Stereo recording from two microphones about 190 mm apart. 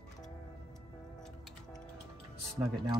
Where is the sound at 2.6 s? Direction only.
15° right (ahead or behind).